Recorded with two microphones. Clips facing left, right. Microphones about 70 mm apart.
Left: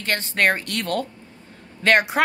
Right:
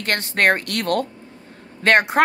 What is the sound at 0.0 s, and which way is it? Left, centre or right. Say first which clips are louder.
Speech: right 2 dB; right.